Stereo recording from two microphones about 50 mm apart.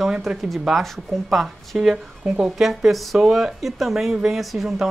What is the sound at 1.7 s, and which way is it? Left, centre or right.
Speech, centre.